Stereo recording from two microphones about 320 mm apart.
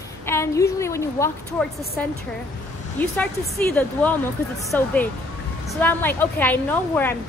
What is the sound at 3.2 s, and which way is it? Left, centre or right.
A woman's voice, centre.